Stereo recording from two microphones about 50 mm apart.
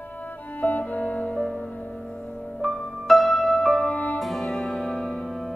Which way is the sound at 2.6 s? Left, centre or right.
Centre.